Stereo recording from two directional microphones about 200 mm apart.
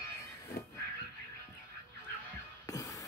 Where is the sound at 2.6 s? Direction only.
15° left (ahead or behind).